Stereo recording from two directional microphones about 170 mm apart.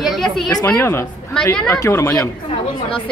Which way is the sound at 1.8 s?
15° left (ahead or behind).